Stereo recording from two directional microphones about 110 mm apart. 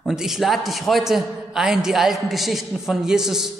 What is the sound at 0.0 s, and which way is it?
A man's voice, 5° right (ahead or behind).